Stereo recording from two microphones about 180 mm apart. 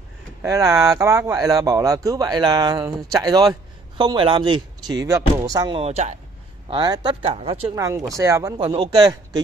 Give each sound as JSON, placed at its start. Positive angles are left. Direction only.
{"t": 0.4, "sound": "speech", "side_deg": -15}
{"t": 5.8, "sound": "speech", "side_deg": -35}
{"t": 6.7, "sound": "speech", "side_deg": -25}
{"t": 7.7, "sound": "speech", "side_deg": -15}